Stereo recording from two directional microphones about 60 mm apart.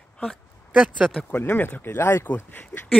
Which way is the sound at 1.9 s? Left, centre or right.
Left.